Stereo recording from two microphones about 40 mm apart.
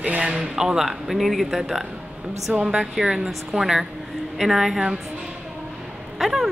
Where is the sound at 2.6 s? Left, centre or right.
Centre.